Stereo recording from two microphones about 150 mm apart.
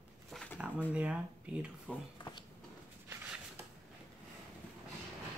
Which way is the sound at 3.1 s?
10° right (ahead or behind).